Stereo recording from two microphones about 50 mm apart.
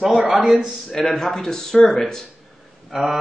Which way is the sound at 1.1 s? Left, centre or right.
Centre.